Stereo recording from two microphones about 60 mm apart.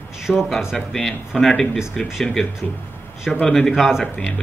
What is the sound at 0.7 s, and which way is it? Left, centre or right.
Speech, centre.